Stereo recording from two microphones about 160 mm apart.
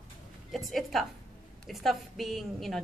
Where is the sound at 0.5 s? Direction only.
Centre (ahead or behind).